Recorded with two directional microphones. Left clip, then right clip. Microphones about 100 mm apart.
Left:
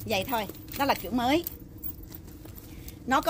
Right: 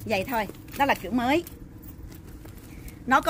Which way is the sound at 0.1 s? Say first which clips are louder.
Right 2 dB; 40° right (ahead or behind).